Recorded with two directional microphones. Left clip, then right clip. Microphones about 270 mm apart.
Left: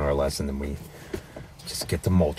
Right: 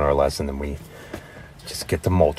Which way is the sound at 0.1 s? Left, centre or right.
Right.